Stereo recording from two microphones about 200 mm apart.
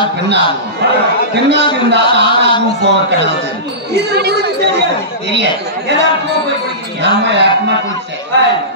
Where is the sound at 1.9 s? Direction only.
60° right (ahead or behind).